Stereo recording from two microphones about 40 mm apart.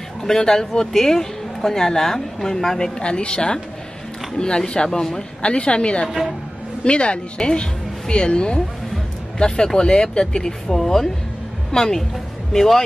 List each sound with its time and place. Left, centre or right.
0.2 s speech: centre
3.0 s a woman's voice: left
6.0 s a woman's voice: centre
6.8 s a woman's voice: left; by 12.8 s centre